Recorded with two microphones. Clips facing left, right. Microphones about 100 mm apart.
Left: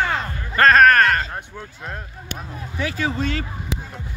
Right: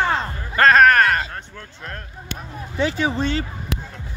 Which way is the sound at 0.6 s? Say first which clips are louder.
Even; 15° right (ahead or behind).